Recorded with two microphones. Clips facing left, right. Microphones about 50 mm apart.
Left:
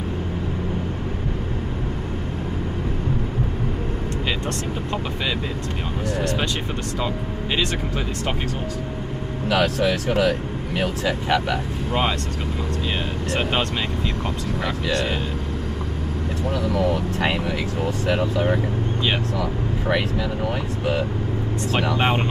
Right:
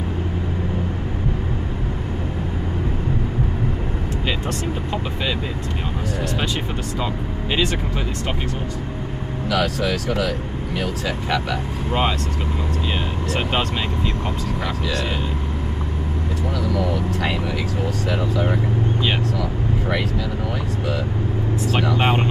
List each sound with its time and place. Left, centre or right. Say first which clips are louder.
9.5 s speech: left 1 dB; left
11.1 s speech: left 3 dB; left
13.3 s speech: even; centre
16.7 s speech: left 1 dB; left
21.9 s speech: right 1 dB; centre